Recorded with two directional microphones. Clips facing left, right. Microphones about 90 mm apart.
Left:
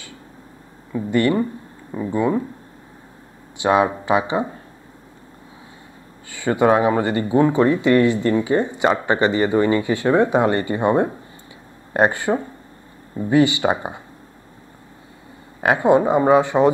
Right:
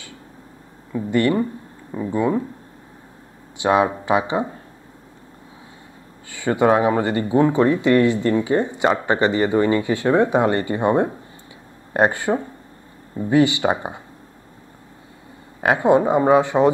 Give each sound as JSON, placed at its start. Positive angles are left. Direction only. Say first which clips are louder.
{"t": 2.0, "sound": "speech", "louder": "even", "side_deg": 30}
{"t": 3.6, "sound": "speech", "louder": "even", "side_deg": 25}
{"t": 6.3, "sound": "speech", "louder": "even", "side_deg": 20}
{"t": 13.7, "sound": "speech", "louder": "even", "side_deg": 30}
{"t": 15.6, "sound": "speech", "louder": "even", "side_deg": 25}